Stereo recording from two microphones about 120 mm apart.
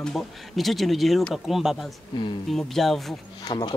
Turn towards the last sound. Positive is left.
turn(degrees=40)  # may be behind; listen again after turning